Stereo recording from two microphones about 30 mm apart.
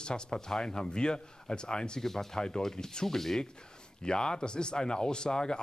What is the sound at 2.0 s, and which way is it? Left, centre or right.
Speech, centre.